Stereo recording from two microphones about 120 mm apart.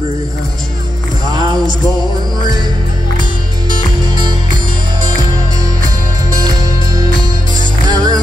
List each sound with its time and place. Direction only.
1.2 s music: 35° right (ahead or behind)
7.9 s music: 35° right (ahead or behind)